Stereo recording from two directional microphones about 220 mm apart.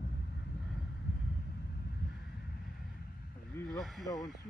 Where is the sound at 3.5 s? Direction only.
Centre (ahead or behind).